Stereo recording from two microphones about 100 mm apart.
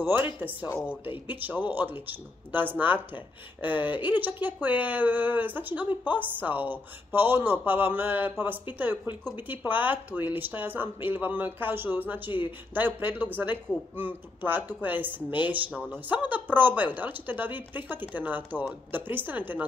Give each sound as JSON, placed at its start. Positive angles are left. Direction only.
{"t": 0.4, "sound": "a woman's voice", "side_deg": -15}
{"t": 1.0, "sound": "speech", "side_deg": 60}
{"t": 1.3, "sound": "speech", "side_deg": -20}
{"t": 12.3, "sound": "speech", "side_deg": 55}
{"t": 12.7, "sound": "a woman's voice", "side_deg": -20}